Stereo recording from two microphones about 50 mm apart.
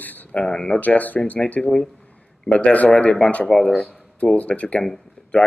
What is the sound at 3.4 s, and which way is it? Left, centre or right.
Speech, centre.